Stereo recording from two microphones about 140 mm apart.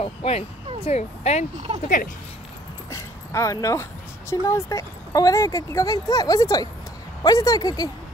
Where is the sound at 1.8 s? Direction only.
75° left (ahead or behind).